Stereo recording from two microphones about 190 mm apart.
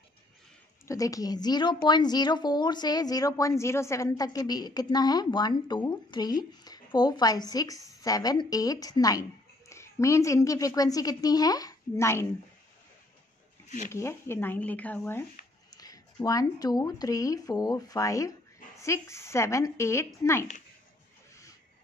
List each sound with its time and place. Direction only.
0.8 s a woman's voice: 20° left (ahead or behind)
13.7 s speech: 40° left (ahead or behind)
13.9 s a woman's voice: 15° left (ahead or behind)